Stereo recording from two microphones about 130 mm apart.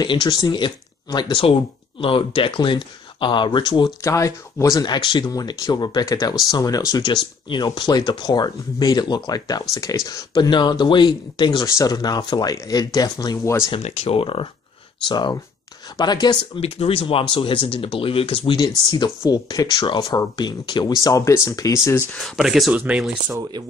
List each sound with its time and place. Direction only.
0.0 s speech: 35° left (ahead or behind)
4.0 s speech: 25° left (ahead or behind)
13.7 s speech: 50° left (ahead or behind); by 16.3 s 30° left (ahead or behind)
16.5 s speech: 50° left (ahead or behind)
19.2 s speech: 30° left (ahead or behind)
22.2 s speech: centre (ahead or behind)